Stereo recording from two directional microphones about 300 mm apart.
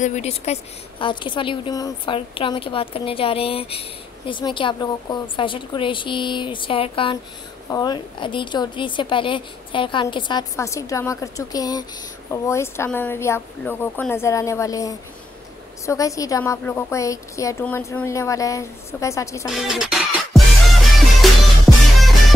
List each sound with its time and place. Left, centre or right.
0.0 s a woman's voice: left
19.5 s music: centre